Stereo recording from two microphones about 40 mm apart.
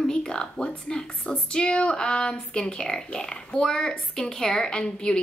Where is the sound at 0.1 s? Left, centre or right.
Left.